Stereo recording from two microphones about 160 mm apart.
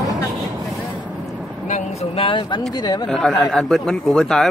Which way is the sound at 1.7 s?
40° left (ahead or behind).